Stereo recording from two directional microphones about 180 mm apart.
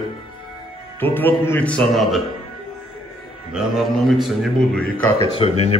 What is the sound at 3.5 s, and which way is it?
A man's voice, centre (ahead or behind).